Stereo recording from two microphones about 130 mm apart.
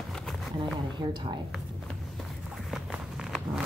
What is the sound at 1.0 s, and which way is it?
Speech, 30° right (ahead or behind).